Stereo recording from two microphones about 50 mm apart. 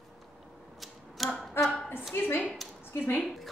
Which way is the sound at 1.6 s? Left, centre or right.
Centre.